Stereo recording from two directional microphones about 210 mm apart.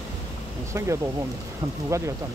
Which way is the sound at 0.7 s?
15° right (ahead or behind).